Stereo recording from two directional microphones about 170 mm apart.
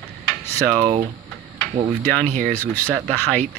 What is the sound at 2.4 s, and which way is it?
Speech, 10° left (ahead or behind).